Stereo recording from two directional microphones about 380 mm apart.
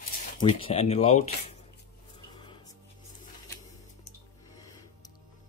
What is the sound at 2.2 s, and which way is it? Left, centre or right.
Music, centre.